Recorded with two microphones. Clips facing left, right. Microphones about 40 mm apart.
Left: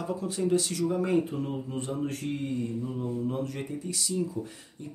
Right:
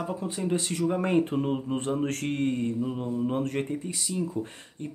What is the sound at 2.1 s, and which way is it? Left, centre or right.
Speech, right.